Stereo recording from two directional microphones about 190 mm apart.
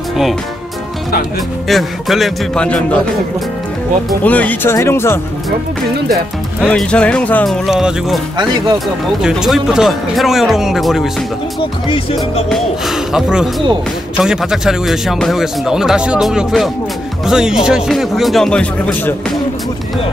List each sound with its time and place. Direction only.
1.7 s speech: centre (ahead or behind)
4.2 s speech: 10° left (ahead or behind)
6.6 s speech: 5° left (ahead or behind)
11.9 s music: 30° left (ahead or behind)
12.4 s speech: centre (ahead or behind)